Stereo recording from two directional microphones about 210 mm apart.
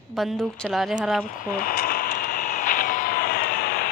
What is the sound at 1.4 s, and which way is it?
Vehicle, 45° left (ahead or behind).